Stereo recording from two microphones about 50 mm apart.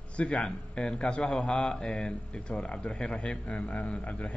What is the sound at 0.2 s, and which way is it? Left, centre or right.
Speech, left.